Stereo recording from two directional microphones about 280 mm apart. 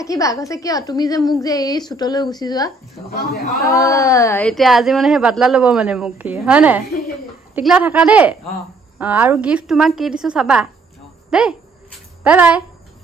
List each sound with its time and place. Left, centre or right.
0.0 s a woman's voice: centre
3.1 s a man's voice: left
3.6 s speech: centre